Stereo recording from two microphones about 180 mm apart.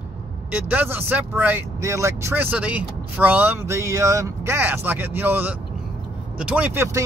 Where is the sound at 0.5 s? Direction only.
10° right (ahead or behind).